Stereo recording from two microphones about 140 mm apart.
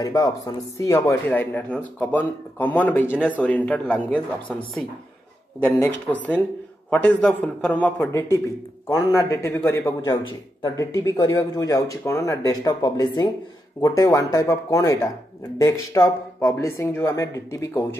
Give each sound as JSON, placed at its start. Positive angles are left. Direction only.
{"t": 0.0, "sound": "a man's voice", "side_deg": 25}